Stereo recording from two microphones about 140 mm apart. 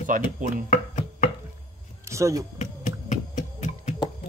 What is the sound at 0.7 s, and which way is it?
Chopping, 65° left (ahead or behind).